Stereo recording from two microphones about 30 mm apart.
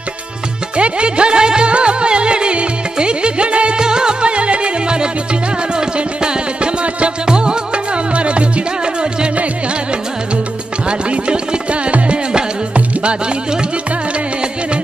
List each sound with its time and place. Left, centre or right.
0.7 s music: right
3.7 s music: right
4.3 s music: right
10.9 s music: right